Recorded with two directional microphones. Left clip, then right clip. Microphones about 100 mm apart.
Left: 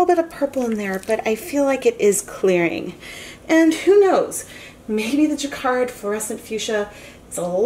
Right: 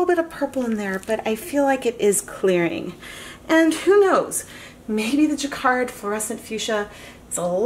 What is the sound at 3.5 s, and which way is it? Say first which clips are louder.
Speech: left 2 dB; 30° right (ahead or behind).